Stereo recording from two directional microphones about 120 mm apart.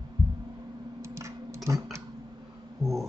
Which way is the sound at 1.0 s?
25° right (ahead or behind).